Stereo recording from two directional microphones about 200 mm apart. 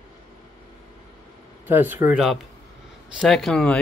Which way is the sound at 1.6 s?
10° right (ahead or behind).